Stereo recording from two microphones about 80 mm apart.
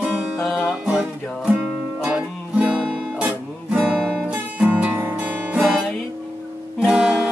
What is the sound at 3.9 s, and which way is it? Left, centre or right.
Guitar, centre.